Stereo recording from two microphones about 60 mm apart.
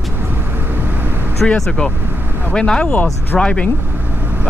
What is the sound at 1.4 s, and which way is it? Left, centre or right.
Speech, centre.